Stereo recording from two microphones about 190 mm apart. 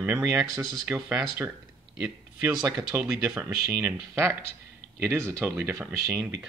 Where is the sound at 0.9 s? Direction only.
5° right (ahead or behind).